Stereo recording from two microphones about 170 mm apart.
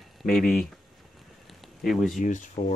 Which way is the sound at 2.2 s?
45° left (ahead or behind).